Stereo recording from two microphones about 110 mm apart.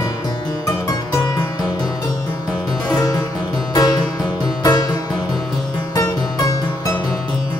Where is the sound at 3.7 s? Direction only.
35° left (ahead or behind).